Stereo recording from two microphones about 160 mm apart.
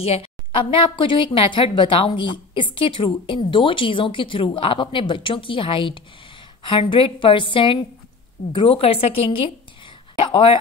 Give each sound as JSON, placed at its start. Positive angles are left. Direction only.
{"t": 0.0, "sound": "speech", "side_deg": 40}